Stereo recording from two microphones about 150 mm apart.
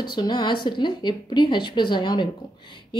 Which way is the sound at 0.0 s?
30° left (ahead or behind).